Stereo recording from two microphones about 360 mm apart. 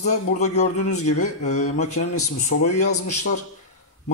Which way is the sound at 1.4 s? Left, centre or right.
Centre.